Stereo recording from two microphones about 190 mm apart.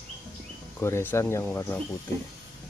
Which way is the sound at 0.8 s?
15° left (ahead or behind).